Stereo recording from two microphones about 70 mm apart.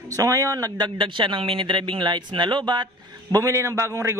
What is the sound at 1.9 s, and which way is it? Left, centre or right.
Speech, right.